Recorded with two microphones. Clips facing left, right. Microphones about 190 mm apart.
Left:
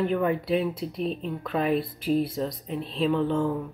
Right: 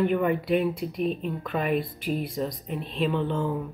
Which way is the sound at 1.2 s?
Centre (ahead or behind).